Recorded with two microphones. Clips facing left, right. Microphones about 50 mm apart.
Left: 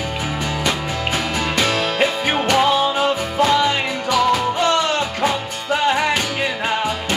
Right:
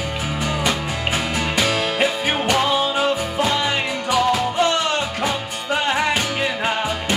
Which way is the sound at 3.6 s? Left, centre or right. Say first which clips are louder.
Left 3 dB; centre.